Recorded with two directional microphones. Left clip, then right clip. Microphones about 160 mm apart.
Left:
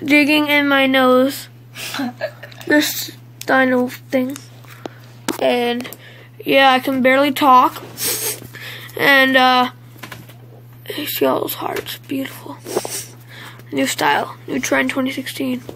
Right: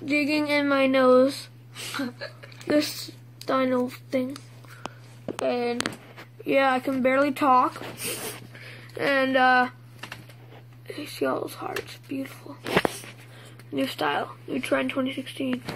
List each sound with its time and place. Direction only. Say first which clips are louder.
0.0 s a sound: left 12 dB; 30° left (ahead or behind)
0.5 s speech: left 8 dB; 10° right (ahead or behind)
2.0 s a woman's voice: left 9 dB; 60° left (ahead or behind)
2.7 s speech: left 8 dB; 10° left (ahead or behind)
5.4 s speech: left 8 dB; 15° left (ahead or behind)
8.5 s speech: left 10 dB; 20° left (ahead or behind)
10.9 s speech: left 10 dB; 20° left (ahead or behind)
13.7 s speech: left 10 dB; 20° left (ahead or behind)